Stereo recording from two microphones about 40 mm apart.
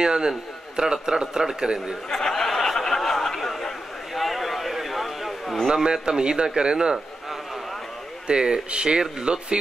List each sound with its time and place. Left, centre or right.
0.0 s speech: centre
2.0 s a sound: centre
5.7 s speech: centre
8.3 s speech: right